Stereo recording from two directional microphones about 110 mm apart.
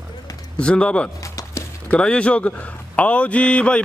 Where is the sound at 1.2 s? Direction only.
30° left (ahead or behind).